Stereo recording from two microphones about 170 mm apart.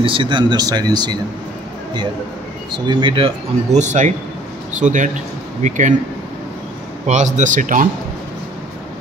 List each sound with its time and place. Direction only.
0.0 s speech: 30° right (ahead or behind)
2.9 s speech: 30° right (ahead or behind)
3.7 s speech: 45° right (ahead or behind)
7.1 s speech: 45° right (ahead or behind)